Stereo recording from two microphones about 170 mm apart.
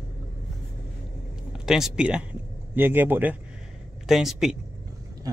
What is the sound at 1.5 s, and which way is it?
Speech, 5° right (ahead or behind).